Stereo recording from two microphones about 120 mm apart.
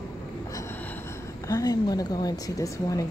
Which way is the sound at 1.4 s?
30° left (ahead or behind).